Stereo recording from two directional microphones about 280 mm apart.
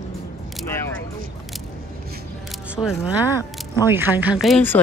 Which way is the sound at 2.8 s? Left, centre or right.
Centre.